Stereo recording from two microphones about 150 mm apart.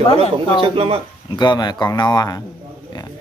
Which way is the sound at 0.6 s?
40° right (ahead or behind).